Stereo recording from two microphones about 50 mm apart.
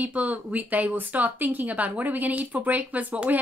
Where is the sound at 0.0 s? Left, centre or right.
Right.